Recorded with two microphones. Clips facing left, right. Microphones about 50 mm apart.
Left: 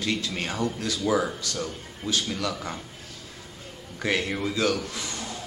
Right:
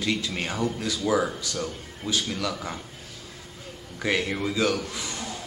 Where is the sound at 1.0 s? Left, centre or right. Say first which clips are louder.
Even; centre.